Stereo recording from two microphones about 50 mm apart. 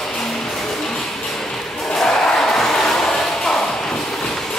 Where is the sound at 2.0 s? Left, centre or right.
Centre.